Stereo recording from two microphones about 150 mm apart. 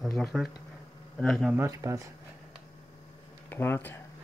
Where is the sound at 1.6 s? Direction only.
20° right (ahead or behind).